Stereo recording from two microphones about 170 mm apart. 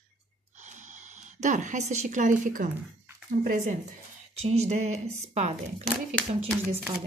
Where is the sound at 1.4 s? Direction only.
45° right (ahead or behind).